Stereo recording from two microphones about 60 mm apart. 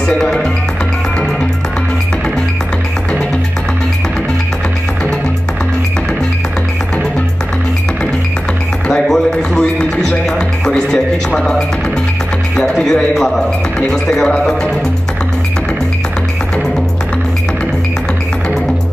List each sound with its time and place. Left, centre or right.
0.0 s speech: centre
8.8 s a sound: centre
10.6 s a man's voice: centre